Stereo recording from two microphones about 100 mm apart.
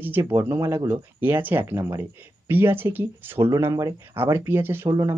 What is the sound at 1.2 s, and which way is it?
Speech, 20° right (ahead or behind).